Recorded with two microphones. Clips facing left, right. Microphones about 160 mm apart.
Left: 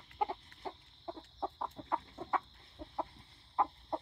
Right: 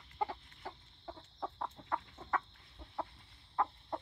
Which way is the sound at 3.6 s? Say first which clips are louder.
Left 2 dB; 20° left (ahead or behind).